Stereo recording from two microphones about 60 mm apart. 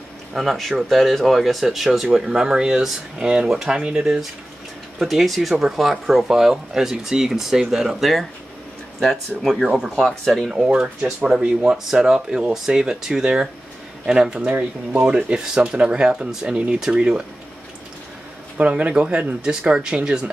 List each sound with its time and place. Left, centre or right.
0.3 s speech: centre
10.5 s speech: centre
14.5 s speech: right; by 17.2 s centre
18.6 s speech: right